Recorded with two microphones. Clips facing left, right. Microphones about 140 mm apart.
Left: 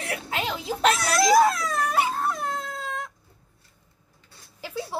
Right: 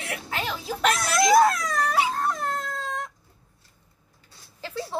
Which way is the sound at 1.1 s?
35° left (ahead or behind).